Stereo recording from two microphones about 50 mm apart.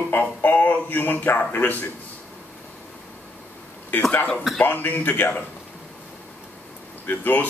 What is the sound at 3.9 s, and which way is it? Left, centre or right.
A man's voice, left.